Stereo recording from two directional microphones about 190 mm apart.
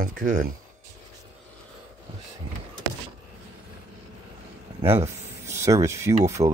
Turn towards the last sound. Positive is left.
turn(degrees=-15)  # may be behind; listen again after turning